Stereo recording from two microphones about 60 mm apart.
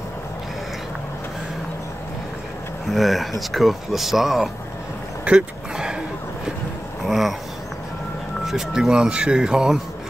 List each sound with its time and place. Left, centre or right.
2.9 s speech: centre
5.2 s a sound: centre
7.1 s speech: centre
8.5 s speech: centre